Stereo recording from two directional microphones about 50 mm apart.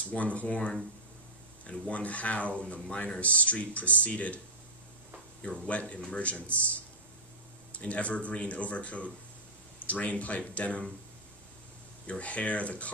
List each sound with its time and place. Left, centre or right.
0.1 s speech: left
5.7 s speech: left
7.7 s speech: left
12.1 s speech: left